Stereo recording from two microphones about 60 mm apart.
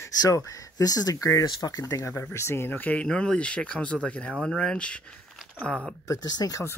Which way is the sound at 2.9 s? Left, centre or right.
Centre.